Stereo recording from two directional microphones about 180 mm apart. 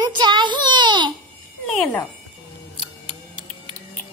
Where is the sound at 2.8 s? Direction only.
25° right (ahead or behind).